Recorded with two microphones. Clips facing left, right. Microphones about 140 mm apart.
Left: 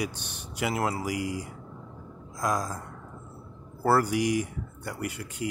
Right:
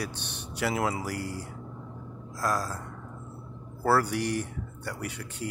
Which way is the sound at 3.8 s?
10° left (ahead or behind).